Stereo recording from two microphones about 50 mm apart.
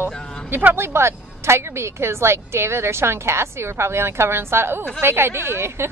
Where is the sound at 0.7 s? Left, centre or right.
Right.